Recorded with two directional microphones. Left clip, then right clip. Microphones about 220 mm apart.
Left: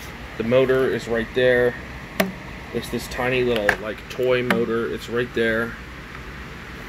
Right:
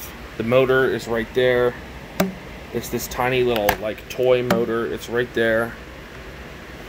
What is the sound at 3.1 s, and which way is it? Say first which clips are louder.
Speech: right 2 dB; 20° right (ahead or behind).